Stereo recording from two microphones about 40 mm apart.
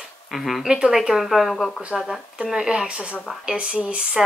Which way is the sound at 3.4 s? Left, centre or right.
Right.